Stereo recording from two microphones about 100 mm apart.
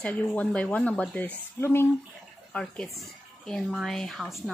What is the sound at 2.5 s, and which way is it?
Speech, 10° left (ahead or behind).